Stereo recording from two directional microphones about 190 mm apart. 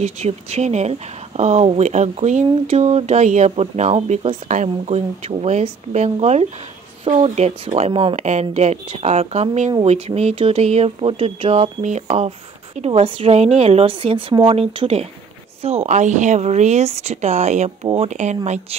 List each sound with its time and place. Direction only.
0.0 s speech: 35° right (ahead or behind)